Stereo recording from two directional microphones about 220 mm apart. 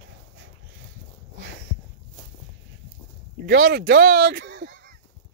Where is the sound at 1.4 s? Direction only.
60° right (ahead or behind).